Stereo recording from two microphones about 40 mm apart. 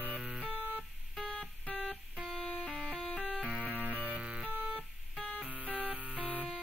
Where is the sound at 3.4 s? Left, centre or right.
Right.